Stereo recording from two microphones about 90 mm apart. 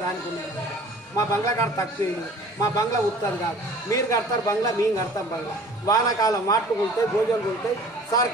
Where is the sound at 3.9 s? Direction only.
35° left (ahead or behind).